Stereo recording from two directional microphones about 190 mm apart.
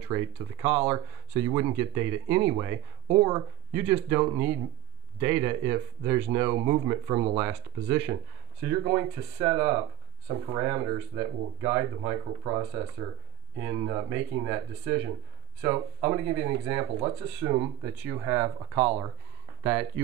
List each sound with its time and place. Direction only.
0.1 s speech: 15° right (ahead or behind)
19.6 s speech: 5° right (ahead or behind)